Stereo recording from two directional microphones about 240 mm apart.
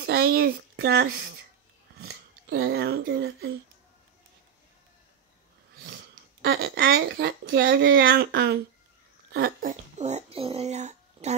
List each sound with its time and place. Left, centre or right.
0.0 s speech: right
6.4 s speech: right